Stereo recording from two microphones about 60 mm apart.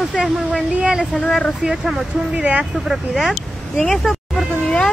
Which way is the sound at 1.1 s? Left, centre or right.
Centre.